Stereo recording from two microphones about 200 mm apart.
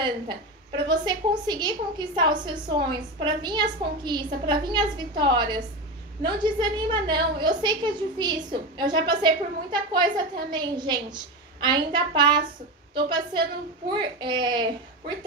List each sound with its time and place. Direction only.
0.0 s a woman's voice: 25° right (ahead or behind)